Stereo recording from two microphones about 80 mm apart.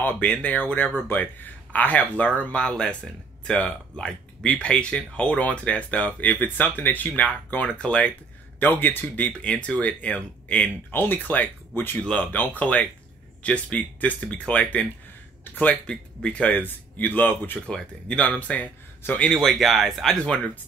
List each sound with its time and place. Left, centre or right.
0.0 s speech: centre
12.0 s speech: centre